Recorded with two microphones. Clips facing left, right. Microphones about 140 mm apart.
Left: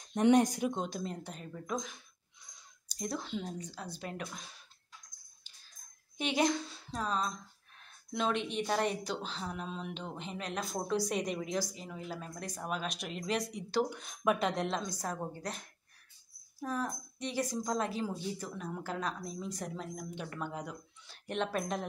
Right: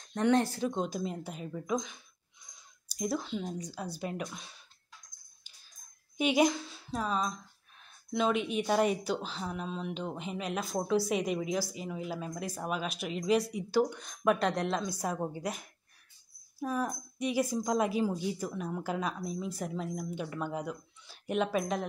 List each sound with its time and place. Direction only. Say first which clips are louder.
0.1 s speech: left 1 dB; 15° left (ahead or behind)
0.7 s a woman's voice: right 4 dB; 5° right (ahead or behind)
6.1 s a woman's voice: right 4 dB; 10° right (ahead or behind)
15.0 s speech: right 4 dB; 10° right (ahead or behind)